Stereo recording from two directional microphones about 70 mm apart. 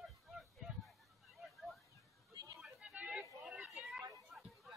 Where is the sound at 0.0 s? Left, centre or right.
Centre.